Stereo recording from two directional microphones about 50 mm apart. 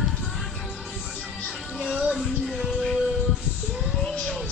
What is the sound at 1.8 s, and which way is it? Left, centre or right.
Music, centre.